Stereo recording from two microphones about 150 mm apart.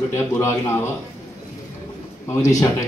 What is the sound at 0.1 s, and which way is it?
Speech, 15° left (ahead or behind).